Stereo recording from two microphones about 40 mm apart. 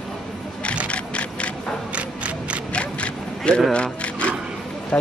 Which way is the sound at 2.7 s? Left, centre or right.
Left.